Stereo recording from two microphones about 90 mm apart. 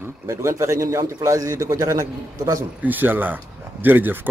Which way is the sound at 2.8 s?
20° right (ahead or behind).